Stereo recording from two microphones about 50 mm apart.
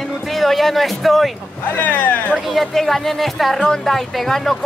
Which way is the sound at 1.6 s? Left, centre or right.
Left.